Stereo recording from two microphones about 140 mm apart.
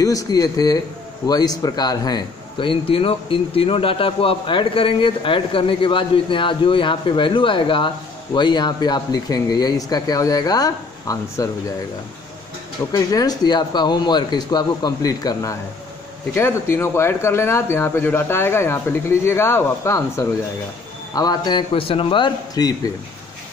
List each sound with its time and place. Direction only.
0.0 s speech: 25° left (ahead or behind)
12.9 s a man's voice: 25° left (ahead or behind)